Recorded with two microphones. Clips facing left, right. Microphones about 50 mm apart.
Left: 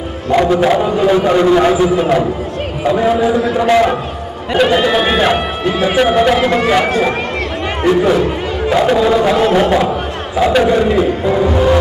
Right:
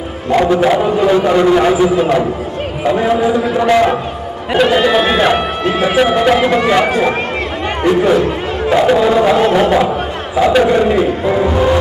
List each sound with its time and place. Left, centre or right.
0.6 s speech: centre
3.3 s speech: centre
6.9 s a man's voice: centre